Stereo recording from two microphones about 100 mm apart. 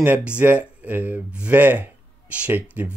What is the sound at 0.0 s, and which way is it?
Speech, 15° right (ahead or behind).